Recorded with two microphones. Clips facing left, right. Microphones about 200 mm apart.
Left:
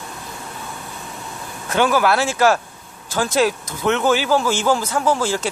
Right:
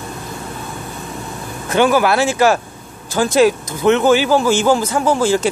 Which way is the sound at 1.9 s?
5° right (ahead or behind).